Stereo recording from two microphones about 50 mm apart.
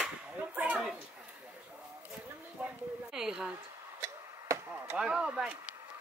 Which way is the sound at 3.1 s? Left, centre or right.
Centre.